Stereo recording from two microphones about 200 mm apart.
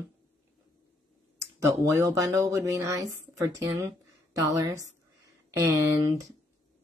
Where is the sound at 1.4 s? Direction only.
15° right (ahead or behind).